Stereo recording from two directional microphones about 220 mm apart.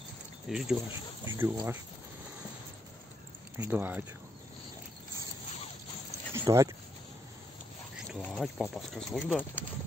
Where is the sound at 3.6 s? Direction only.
10° right (ahead or behind).